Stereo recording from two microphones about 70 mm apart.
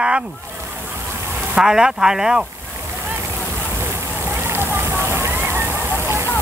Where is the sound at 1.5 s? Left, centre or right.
Centre.